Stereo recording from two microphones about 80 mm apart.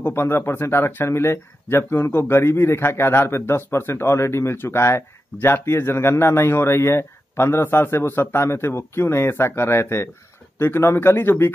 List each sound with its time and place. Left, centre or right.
0.0 s speech: left